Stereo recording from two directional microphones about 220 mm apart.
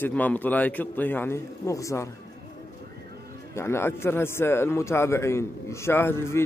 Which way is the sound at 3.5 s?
10° left (ahead or behind).